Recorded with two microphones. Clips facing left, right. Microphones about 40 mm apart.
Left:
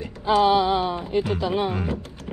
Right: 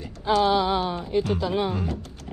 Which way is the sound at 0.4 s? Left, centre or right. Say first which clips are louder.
Left 3 dB; left.